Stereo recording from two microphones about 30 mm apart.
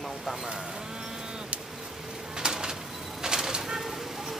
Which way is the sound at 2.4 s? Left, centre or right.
Right.